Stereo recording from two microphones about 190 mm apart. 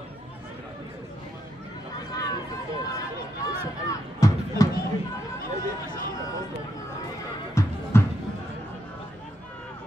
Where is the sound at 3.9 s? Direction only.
15° left (ahead or behind).